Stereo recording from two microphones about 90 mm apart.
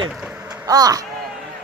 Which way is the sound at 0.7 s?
45° right (ahead or behind).